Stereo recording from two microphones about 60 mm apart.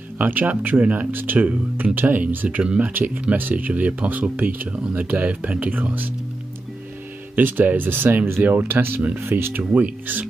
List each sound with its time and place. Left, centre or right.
0.2 s speech: right
7.3 s speech: right